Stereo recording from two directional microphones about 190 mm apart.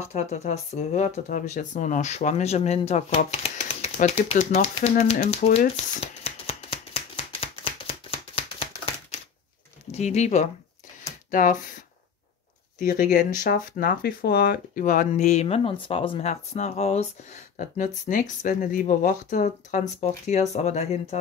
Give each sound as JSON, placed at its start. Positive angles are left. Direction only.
{"t": 0.1, "sound": "speech", "side_deg": 35}
{"t": 6.2, "sound": "a sound", "side_deg": 30}
{"t": 9.8, "sound": "speech", "side_deg": 35}